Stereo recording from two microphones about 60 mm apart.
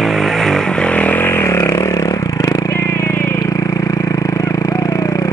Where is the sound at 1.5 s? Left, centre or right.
Left.